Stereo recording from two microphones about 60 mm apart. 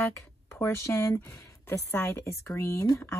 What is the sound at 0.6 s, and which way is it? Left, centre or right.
Speech, left.